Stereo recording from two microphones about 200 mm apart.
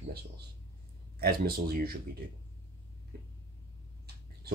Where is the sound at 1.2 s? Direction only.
50° right (ahead or behind).